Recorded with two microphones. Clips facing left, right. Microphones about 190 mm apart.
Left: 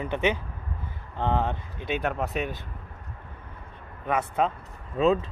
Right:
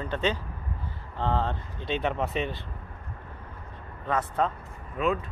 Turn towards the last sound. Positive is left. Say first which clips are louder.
# left 5 dB
turn(degrees=25)  # may be behind; listen again after turning